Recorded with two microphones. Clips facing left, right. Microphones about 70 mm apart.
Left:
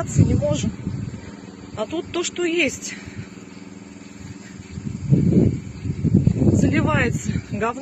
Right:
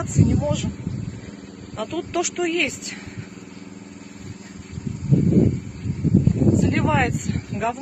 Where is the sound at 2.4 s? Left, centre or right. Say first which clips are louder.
Left 2 dB; centre.